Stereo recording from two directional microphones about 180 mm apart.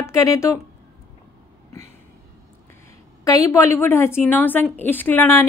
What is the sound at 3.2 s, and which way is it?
A woman's voice, 20° left (ahead or behind).